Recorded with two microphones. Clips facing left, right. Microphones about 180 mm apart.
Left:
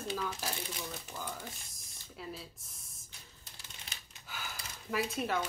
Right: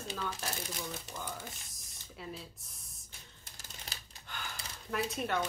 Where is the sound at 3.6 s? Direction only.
35° right (ahead or behind).